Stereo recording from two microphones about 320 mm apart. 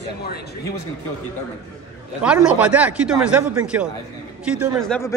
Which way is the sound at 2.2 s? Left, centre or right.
Centre.